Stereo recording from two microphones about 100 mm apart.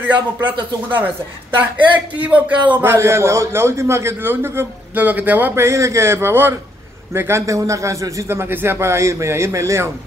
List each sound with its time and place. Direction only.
0.0 s a man's voice: 15° right (ahead or behind)
2.1 s a man's voice: 15° right (ahead or behind)
2.8 s a man's voice: 25° right (ahead or behind)